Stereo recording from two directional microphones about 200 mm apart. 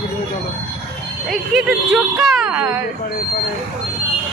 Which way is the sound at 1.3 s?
Centre (ahead or behind).